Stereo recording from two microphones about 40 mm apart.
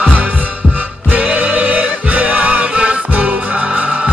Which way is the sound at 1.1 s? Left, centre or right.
Right.